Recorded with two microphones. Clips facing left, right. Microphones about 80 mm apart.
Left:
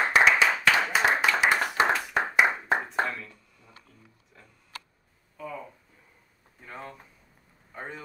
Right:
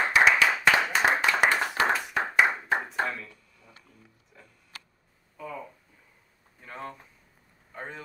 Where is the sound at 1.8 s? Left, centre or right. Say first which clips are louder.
Left 1 dB; left.